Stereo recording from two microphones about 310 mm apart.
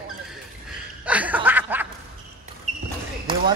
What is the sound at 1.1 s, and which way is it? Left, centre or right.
Snicker, centre.